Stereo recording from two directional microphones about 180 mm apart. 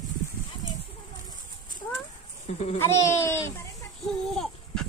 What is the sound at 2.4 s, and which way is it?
Speech, 40° left (ahead or behind).